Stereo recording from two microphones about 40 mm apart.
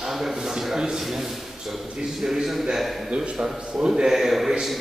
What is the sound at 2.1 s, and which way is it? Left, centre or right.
A man's voice, centre.